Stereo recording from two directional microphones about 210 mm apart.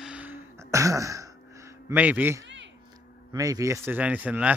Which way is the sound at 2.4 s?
60° right (ahead or behind).